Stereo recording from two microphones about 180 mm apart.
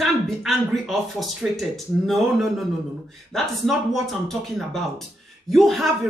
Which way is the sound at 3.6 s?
Centre (ahead or behind).